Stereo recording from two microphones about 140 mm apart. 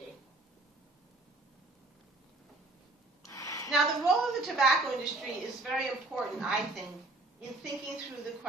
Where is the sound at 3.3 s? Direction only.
25° left (ahead or behind).